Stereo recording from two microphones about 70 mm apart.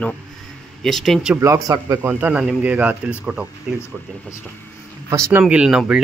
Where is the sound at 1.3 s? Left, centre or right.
Right.